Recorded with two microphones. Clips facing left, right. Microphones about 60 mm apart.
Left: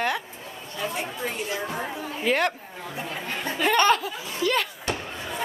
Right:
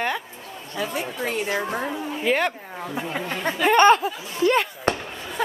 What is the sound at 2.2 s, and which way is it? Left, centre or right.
Speech, centre.